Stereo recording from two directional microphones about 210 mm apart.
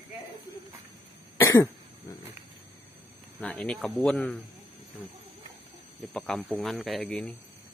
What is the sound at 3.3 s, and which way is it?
Speech, 5° left (ahead or behind).